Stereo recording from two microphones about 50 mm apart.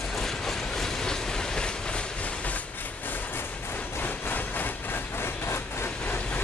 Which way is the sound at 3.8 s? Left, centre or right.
Left.